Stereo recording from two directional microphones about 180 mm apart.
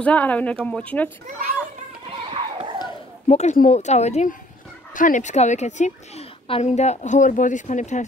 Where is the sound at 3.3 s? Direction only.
40° left (ahead or behind).